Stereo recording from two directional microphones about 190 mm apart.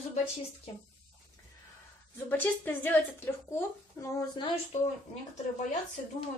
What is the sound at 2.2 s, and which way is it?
A woman's voice, 10° left (ahead or behind).